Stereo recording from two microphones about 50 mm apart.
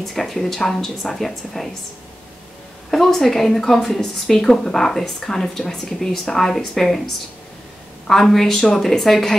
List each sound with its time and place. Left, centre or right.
0.0 s speech: centre
2.9 s a woman's voice: centre
8.1 s a woman's voice: centre